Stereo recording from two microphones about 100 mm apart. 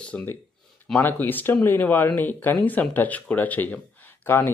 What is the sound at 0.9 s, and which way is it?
Speech, 20° left (ahead or behind).